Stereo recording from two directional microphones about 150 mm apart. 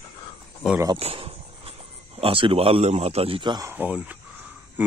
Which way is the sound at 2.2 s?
35° right (ahead or behind).